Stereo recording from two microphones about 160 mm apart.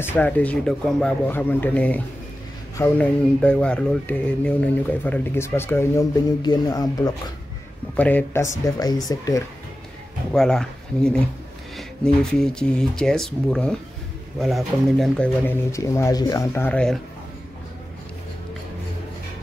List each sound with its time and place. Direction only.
0.0 s speech: 10° left (ahead or behind)
6.4 s speech: 25° left (ahead or behind)
7.9 s speech: 10° left (ahead or behind)
10.3 s speech: 5° left (ahead or behind)
15.4 s speech: 15° left (ahead or behind)